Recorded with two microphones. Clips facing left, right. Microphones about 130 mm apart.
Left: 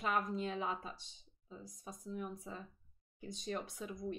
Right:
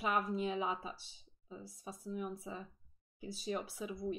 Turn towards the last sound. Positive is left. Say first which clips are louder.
# right 3 dB
turn(degrees=-5)  # may be behind; listen again after turning